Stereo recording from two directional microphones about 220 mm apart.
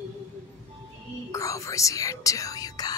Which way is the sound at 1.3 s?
15° left (ahead or behind).